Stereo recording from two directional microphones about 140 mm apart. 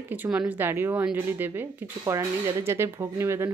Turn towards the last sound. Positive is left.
turn(degrees=-20)  # may be behind; listen again after turning